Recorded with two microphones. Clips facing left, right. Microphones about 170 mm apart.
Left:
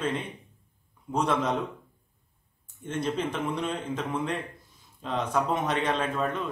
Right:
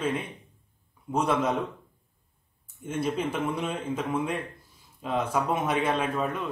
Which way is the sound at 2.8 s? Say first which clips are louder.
Right 1 dB; 10° right (ahead or behind).